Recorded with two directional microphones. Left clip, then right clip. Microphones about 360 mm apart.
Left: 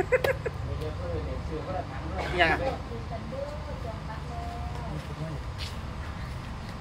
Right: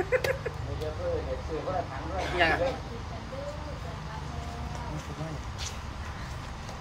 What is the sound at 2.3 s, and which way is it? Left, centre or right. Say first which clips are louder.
Speech: left 1 dB; centre.